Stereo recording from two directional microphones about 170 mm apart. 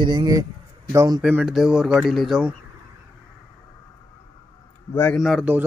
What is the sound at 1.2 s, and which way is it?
Speech, 5° right (ahead or behind).